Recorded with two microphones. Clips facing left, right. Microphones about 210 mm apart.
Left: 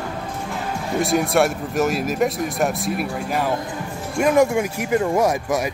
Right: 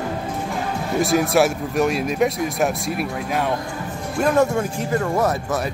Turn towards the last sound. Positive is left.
turn(degrees=10)  # may be behind; listen again after turning